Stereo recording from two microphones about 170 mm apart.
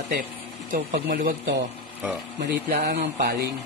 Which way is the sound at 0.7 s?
50° right (ahead or behind).